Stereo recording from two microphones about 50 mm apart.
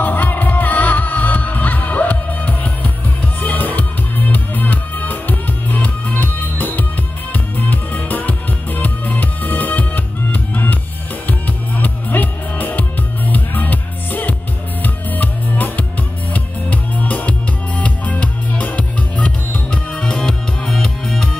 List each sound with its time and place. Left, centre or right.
0.0 s music: left
19.9 s music: centre